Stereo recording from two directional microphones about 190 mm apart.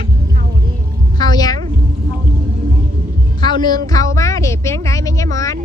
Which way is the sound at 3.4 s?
25° left (ahead or behind).